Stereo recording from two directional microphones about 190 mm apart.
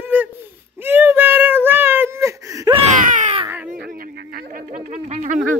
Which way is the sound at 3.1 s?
40° right (ahead or behind).